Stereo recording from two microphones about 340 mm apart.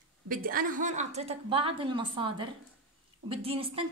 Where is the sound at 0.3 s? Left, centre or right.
Right.